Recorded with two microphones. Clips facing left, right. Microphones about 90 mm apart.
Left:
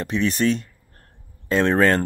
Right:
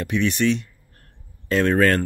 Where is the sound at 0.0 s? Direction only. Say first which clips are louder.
Even; 35° left (ahead or behind).